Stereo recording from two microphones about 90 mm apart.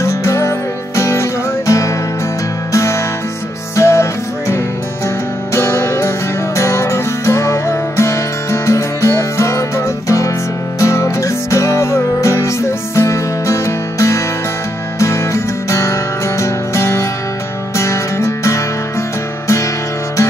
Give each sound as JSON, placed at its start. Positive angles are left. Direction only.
{"t": 0.0, "sound": "music", "side_deg": 35}